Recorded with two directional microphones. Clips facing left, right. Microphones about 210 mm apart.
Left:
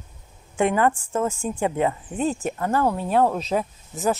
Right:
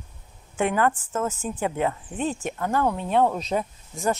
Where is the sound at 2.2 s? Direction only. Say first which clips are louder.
Left 3 dB; 40° left (ahead or behind).